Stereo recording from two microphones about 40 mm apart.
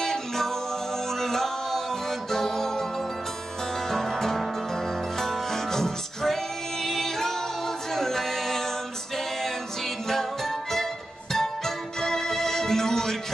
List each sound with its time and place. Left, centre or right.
0.0 s music: centre
3.9 s music: centre
6.8 s a capella: centre
10.0 s music: centre